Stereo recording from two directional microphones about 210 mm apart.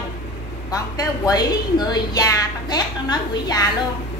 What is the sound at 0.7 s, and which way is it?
A woman's voice, 15° left (ahead or behind).